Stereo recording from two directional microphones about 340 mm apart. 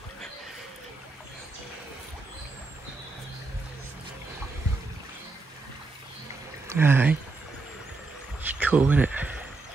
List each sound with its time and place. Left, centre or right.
6.7 s speech: centre
8.5 s speech: centre